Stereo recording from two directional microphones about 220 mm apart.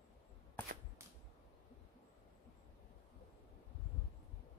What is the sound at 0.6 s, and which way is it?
Whip, 10° left (ahead or behind).